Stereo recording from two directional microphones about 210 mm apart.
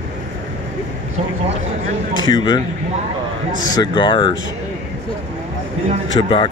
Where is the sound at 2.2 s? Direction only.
20° left (ahead or behind).